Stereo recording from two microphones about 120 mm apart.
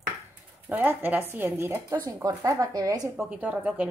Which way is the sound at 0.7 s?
15° right (ahead or behind).